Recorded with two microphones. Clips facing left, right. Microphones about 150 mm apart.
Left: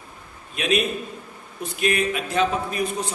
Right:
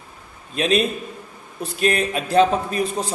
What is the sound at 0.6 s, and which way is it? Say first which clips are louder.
A man's voice: right 3 dB; 30° right (ahead or behind).